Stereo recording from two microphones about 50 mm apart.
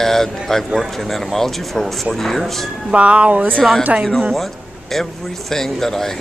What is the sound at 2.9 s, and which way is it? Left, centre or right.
Speech, right.